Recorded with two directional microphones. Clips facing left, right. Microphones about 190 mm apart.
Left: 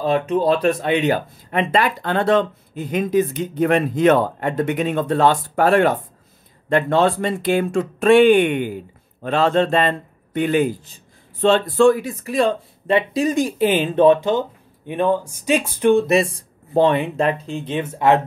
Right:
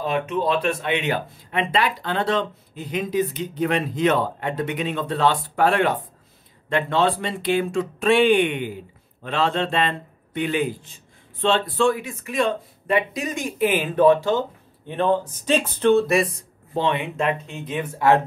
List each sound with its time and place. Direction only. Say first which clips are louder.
0.0 s a man's voice: left 5 dB; 35° left (ahead or behind)
16.7 s speech: left 7 dB; 40° left (ahead or behind); by 18.2 s 20° left (ahead or behind)